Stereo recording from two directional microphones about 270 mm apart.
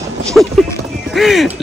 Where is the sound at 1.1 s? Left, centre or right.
Centre.